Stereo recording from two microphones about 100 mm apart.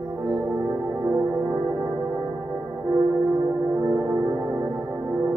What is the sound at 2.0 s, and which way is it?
Music, 25° right (ahead or behind).